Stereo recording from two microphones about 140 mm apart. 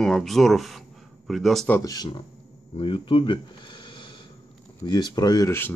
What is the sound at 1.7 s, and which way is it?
Speech, 25° left (ahead or behind).